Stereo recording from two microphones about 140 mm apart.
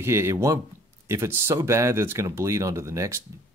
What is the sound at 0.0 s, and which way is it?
Speech, 20° right (ahead or behind).